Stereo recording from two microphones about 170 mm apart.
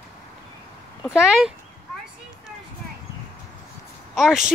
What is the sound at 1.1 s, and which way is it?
Speech, centre (ahead or behind).